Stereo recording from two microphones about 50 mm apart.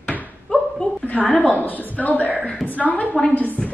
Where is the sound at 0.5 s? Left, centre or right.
Left.